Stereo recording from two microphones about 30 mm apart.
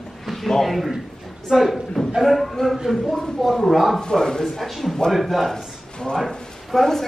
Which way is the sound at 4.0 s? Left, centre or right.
Left.